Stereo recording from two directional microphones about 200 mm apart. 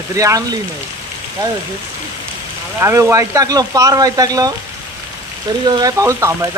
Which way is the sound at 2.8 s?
15° right (ahead or behind).